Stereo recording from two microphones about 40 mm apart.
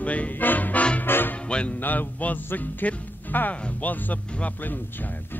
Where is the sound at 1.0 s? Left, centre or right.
Left.